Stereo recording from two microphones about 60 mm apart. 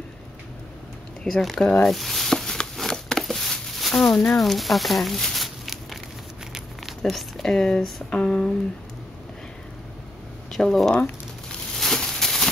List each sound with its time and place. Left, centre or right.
1.2 s speech: centre
1.6 s speech: left
1.9 s a sound: centre
4.1 s speech: centre
4.4 s speech: centre
7.0 s speech: centre
10.5 s speech: centre
11.7 s a sound: centre